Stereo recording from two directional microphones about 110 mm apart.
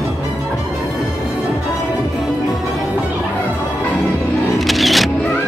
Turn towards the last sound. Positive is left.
turn(degrees=0)  # may be behind; listen again after turning